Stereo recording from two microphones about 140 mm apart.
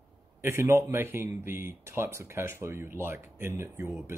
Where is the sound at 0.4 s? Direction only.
20° right (ahead or behind).